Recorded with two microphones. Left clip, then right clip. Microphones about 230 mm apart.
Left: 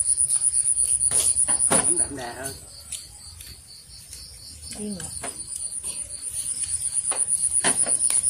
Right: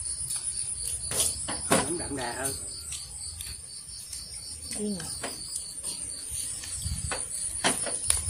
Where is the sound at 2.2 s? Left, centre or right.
Centre.